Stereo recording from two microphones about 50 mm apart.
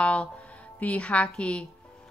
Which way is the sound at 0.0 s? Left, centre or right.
Left.